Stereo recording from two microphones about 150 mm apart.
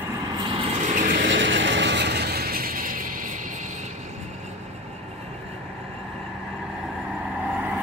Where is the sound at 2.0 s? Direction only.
90° right; by 3.3 s 65° right (ahead or behind).